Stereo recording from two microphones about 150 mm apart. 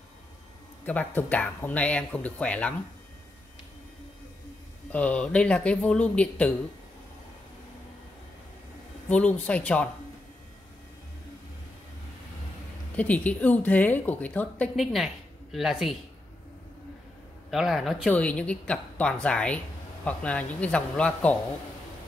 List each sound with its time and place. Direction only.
0.8 s a woman's voice: 10° left (ahead or behind)
4.9 s a woman's voice: 10° left (ahead or behind)
9.1 s a woman's voice: 10° left (ahead or behind)
12.9 s a woman's voice: 10° left (ahead or behind)
14.8 s a man's voice: centre (ahead or behind)
17.5 s a woman's voice: 5° right (ahead or behind)